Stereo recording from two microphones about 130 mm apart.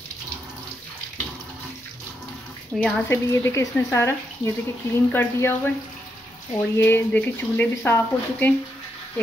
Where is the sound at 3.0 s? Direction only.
20° left (ahead or behind).